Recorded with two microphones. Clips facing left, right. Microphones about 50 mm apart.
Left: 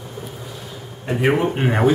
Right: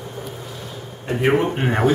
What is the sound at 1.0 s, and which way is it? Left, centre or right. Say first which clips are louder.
Speech: even; centre.